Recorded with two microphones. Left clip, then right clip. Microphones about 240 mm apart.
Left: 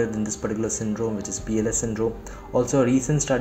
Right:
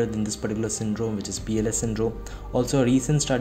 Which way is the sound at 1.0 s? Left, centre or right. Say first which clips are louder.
Left 2 dB; right.